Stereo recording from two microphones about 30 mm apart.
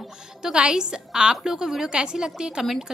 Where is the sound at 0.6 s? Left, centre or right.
Right.